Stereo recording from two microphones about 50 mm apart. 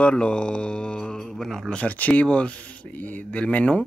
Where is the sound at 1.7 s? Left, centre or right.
Left.